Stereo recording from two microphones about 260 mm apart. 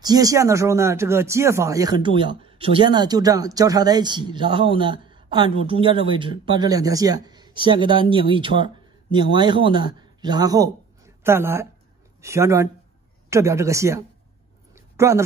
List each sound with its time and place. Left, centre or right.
0.0 s speech: centre